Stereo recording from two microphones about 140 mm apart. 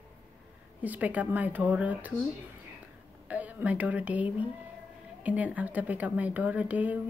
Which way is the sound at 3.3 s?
10° right (ahead or behind).